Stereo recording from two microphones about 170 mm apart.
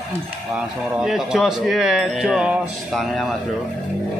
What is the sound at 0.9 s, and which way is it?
A man's voice, 5° right (ahead or behind).